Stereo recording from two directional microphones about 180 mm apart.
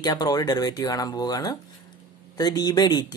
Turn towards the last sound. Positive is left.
turn(degrees=20)  # may be behind; listen again after turning